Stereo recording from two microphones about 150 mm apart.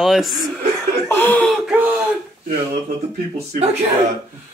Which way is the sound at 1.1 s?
15° left (ahead or behind).